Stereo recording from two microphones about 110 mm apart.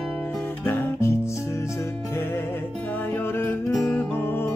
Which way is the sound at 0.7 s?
25° left (ahead or behind).